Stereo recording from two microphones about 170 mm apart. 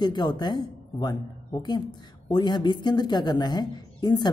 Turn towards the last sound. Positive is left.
turn(degrees=25)  # may be behind; listen again after turning